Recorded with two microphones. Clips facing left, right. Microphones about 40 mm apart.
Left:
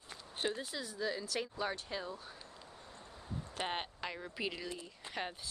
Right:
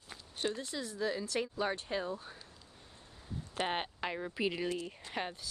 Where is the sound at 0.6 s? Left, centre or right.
Centre.